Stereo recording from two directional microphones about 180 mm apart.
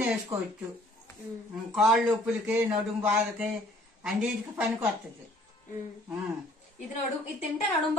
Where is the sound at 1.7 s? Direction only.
Centre (ahead or behind).